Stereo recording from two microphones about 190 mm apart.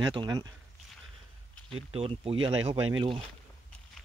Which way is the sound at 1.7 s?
30° right (ahead or behind).